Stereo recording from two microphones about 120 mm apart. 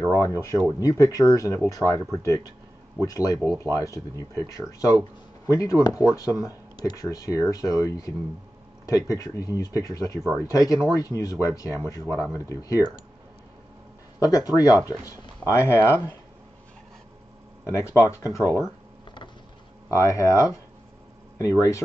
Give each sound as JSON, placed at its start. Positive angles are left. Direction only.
{"t": 0.0, "sound": "speech", "side_deg": 25}
{"t": 14.2, "sound": "speech", "side_deg": 30}
{"t": 17.6, "sound": "speech", "side_deg": 25}
{"t": 19.9, "sound": "speech", "side_deg": 25}